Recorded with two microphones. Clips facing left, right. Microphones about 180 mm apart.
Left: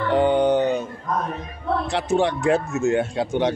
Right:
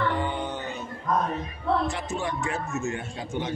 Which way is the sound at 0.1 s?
80° left.